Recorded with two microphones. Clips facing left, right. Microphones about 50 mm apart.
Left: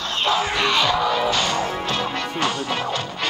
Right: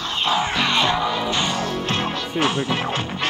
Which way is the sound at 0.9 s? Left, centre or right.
Centre.